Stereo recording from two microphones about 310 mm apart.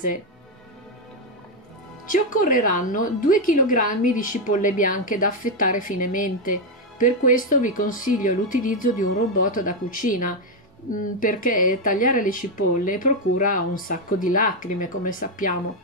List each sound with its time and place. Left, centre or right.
2.0 s a woman's voice: left